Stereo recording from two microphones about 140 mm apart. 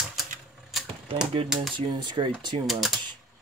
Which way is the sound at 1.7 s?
35° right (ahead or behind).